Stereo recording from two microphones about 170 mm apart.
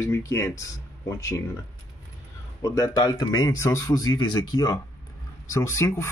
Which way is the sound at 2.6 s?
20° left (ahead or behind).